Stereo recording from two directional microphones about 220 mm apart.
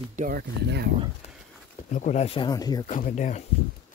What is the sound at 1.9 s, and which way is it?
Speech, 35° left (ahead or behind).